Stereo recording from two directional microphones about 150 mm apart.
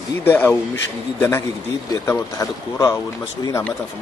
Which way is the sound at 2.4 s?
20° left (ahead or behind).